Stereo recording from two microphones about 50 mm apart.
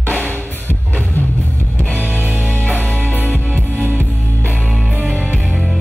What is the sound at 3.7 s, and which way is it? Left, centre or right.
Music, right.